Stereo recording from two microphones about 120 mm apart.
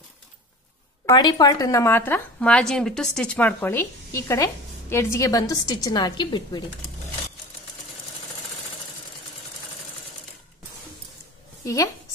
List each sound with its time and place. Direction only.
1.1 s speech: 35° left (ahead or behind)
11.6 s a woman's voice: 25° left (ahead or behind)